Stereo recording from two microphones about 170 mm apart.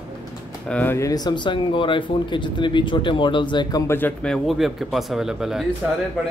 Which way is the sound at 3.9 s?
10° left (ahead or behind).